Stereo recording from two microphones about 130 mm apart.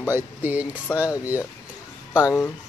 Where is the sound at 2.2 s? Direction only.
25° left (ahead or behind).